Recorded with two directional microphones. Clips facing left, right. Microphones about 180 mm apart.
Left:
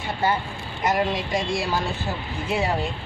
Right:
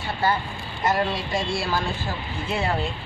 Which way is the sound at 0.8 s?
15° left (ahead or behind).